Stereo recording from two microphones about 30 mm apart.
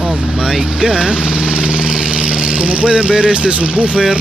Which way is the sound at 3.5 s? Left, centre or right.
Right.